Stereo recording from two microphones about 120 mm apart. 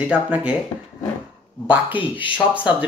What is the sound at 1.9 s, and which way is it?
Speech, 45° left (ahead or behind).